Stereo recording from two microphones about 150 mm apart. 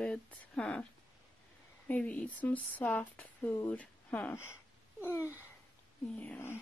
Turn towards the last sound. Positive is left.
turn(degrees=15)  # may be behind; listen again after turning